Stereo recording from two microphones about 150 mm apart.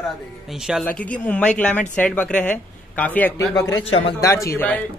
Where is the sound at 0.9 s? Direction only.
10° left (ahead or behind).